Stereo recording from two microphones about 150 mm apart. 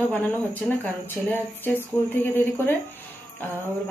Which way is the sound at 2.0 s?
15° left (ahead or behind).